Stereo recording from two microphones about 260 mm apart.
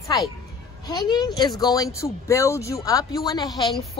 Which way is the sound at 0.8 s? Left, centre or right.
Centre.